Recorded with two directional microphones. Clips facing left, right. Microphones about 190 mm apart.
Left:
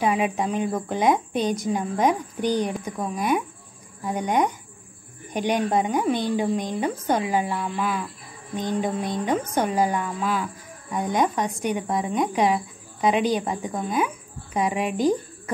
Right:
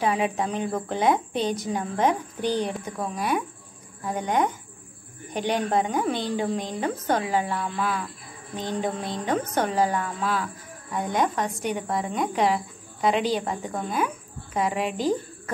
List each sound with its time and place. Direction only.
0.0 s a woman's voice: 15° left (ahead or behind)